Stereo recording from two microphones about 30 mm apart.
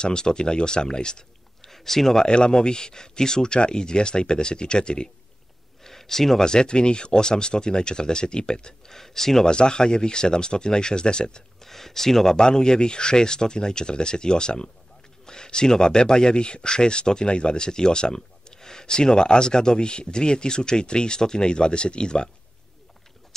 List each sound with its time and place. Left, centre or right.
0.0 s speech: left
1.6 s a sound: centre
2.2 s speech: left
5.9 s a sound: centre
6.4 s speech: left
8.9 s speech: centre
9.5 s speech: left
11.6 s speech: centre
12.4 s speech: left